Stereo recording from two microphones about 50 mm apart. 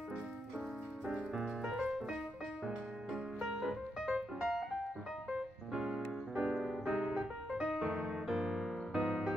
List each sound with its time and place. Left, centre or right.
1.3 s music: centre
3.3 s music: centre
5.7 s music: centre